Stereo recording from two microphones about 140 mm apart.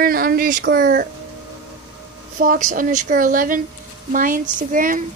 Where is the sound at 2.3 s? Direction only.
80° right.